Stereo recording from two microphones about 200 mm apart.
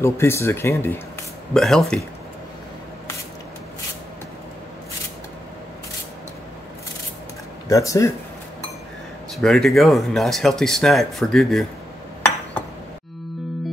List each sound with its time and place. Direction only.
0.0 s speech: 15° left (ahead or behind)
7.6 s speech: 15° left (ahead or behind)
9.3 s speech: centre (ahead or behind)